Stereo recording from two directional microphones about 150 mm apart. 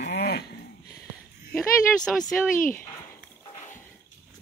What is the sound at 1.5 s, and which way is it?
Speech, 5° left (ahead or behind).